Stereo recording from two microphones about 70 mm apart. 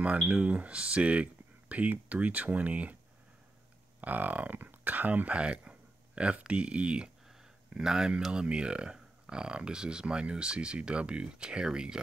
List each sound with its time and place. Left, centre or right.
0.0 s speech: centre
4.0 s speech: right